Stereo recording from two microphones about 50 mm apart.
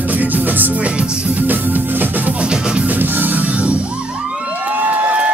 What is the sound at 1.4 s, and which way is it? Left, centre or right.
Music, right.